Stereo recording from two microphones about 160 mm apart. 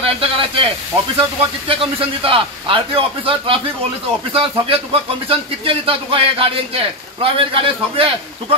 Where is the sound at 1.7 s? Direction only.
35° right (ahead or behind).